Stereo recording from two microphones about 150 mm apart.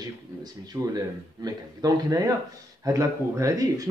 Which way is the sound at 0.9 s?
25° right (ahead or behind).